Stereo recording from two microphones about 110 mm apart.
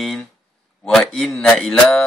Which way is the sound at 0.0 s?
Centre (ahead or behind).